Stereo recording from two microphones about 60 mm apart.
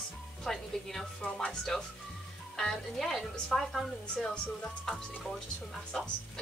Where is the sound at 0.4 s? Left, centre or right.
Centre.